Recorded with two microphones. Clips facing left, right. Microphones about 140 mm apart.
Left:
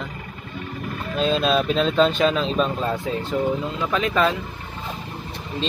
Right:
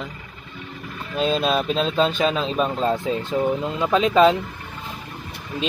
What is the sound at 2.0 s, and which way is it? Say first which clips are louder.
Speech: left 2 dB; 35° right (ahead or behind).